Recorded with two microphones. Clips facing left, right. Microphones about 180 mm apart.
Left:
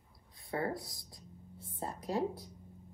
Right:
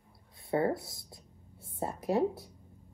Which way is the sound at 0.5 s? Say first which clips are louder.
Right 7 dB; 25° right (ahead or behind).